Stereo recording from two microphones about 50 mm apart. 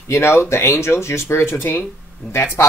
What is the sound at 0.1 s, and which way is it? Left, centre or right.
Speech, left.